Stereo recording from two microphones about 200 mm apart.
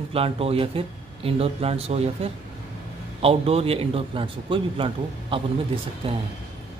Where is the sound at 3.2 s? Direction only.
30° right (ahead or behind).